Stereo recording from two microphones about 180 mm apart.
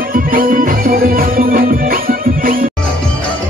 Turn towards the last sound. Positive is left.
turn(degrees=-50)  # may be behind; listen again after turning